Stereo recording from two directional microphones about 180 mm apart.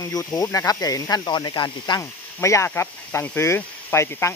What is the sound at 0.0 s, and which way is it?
Speech, 20° left (ahead or behind).